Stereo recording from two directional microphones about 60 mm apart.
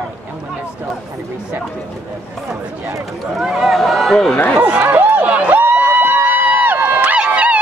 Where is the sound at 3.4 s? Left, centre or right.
Centre.